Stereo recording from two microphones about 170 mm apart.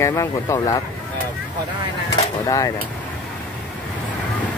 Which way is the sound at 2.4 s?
20° left (ahead or behind).